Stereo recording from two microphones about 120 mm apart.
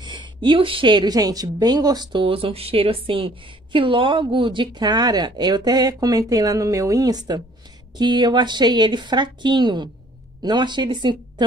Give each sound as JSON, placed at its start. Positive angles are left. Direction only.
{"t": 0.0, "sound": "a woman's voice", "side_deg": -40}
{"t": 2.2, "sound": "a woman's voice", "side_deg": -50}